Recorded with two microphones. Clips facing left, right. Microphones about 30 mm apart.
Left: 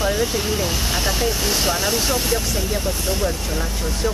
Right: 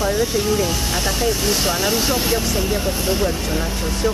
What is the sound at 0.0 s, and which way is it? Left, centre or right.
Speech, centre.